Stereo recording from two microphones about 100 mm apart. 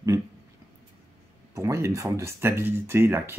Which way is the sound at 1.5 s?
30° right (ahead or behind).